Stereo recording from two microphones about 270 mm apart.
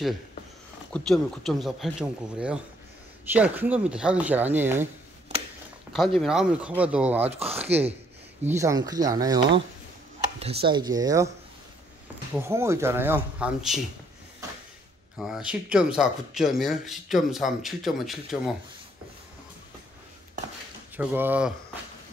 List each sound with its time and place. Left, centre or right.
0.9 s speech: centre
5.9 s speech: centre
7.2 s speech: right
7.5 s speech: centre
12.4 s speech: centre
15.1 s speech: centre
20.9 s speech: centre